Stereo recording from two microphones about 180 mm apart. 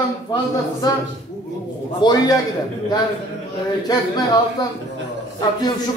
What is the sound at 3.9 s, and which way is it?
Speech, 20° left (ahead or behind).